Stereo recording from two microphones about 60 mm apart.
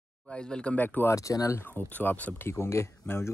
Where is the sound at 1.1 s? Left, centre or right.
Left.